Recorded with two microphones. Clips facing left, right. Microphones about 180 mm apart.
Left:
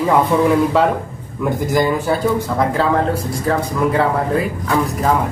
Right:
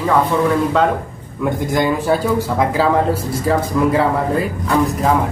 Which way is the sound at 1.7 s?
Centre (ahead or behind).